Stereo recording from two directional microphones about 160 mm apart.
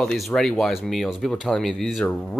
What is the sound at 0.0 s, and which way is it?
Speech, 5° left (ahead or behind).